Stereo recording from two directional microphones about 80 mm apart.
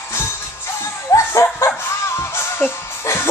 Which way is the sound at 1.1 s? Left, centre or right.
Left.